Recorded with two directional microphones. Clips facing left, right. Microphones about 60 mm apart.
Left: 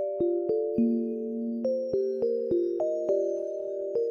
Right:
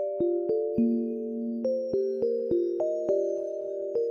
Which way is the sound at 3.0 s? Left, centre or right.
Left.